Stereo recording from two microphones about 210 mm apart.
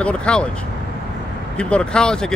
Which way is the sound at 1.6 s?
5° left (ahead or behind).